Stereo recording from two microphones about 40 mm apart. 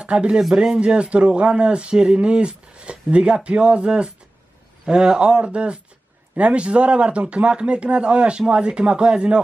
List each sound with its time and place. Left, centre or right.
0.0 s speech: right